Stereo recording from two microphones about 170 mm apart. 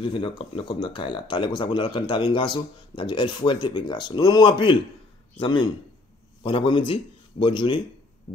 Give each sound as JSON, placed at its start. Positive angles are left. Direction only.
{"t": 0.0, "sound": "speech", "side_deg": 30}